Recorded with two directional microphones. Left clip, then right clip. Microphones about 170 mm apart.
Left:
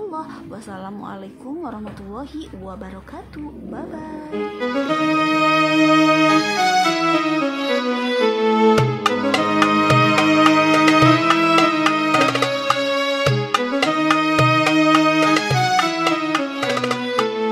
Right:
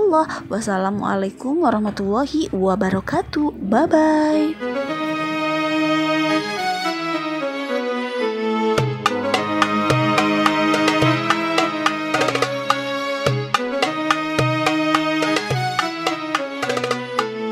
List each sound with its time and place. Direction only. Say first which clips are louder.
3.7 s speech: right 18 dB; 45° right (ahead or behind)
5.0 s music: left 8 dB; centre (ahead or behind)
8.2 s music: left 6 dB; centre (ahead or behind)